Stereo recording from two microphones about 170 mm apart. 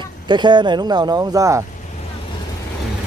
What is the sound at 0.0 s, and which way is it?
Speech, 25° right (ahead or behind).